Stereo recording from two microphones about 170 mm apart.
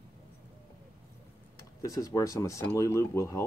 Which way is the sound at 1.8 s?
20° left (ahead or behind).